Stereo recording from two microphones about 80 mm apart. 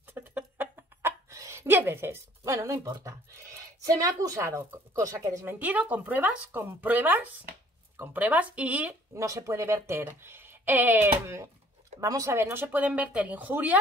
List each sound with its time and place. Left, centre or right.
0.0 s a sound: right
1.3 s a sound: right
1.8 s speech: right
5.6 s speech: centre
9.1 s speech: right
12.0 s speech: right; by 13.7 s centre